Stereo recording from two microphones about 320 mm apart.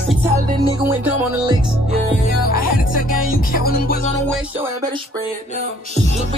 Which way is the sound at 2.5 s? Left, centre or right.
Left.